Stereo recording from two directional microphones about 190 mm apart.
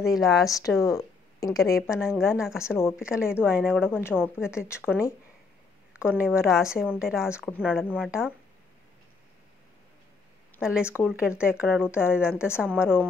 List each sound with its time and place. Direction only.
0.0 s a woman's voice: centre (ahead or behind)
0.5 s speech: 20° left (ahead or behind)
0.8 s a sound: 20° left (ahead or behind)
1.8 s a woman's voice: 5° right (ahead or behind)
4.6 s speech: 15° left (ahead or behind)
5.9 s a woman's voice: 5° right (ahead or behind)
10.6 s a woman's voice: 5° right (ahead or behind)